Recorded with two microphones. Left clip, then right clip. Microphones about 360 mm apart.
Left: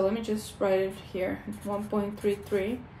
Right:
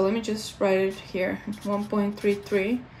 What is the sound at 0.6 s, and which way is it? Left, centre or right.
Speech, right.